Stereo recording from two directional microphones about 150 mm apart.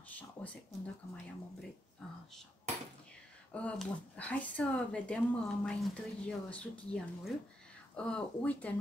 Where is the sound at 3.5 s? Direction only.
10° left (ahead or behind).